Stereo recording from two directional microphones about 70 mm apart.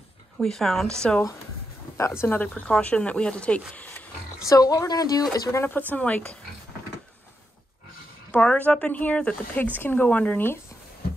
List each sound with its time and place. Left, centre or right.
0.4 s a woman's voice: centre
2.0 s speech: left
2.2 s speech: left
3.7 s a sound: left
4.5 s speech: left
5.5 s speech: left
5.8 s speech: left
8.3 s speech: centre